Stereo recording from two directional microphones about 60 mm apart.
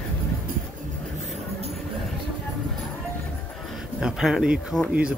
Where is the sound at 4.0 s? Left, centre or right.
Centre.